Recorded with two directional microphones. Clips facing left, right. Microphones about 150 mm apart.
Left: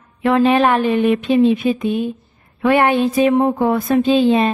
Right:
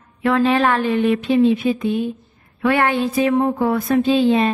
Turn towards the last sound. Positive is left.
turn(degrees=20)  # may be behind; listen again after turning